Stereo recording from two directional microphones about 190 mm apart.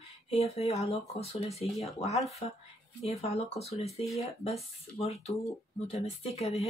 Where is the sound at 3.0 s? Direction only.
35° left (ahead or behind).